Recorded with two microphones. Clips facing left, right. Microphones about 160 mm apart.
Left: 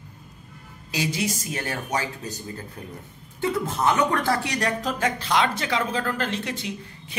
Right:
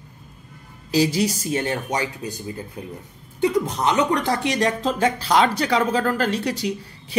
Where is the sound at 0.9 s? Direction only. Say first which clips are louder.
Right 7 dB; 35° right (ahead or behind).